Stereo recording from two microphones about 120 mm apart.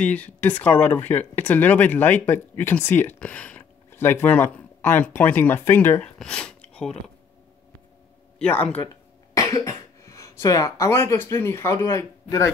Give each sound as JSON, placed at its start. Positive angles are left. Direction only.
{"t": 0.0, "sound": "speech", "side_deg": 10}
{"t": 6.1, "sound": "speech", "side_deg": 5}
{"t": 6.7, "sound": "creak", "side_deg": 5}
{"t": 8.4, "sound": "speech", "side_deg": 10}
{"t": 8.8, "sound": "speech", "side_deg": 30}